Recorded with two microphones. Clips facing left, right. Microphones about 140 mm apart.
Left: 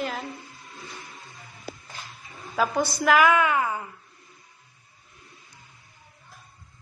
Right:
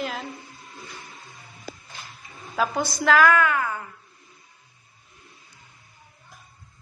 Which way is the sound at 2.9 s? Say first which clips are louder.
Right 1 dB; 10° left (ahead or behind).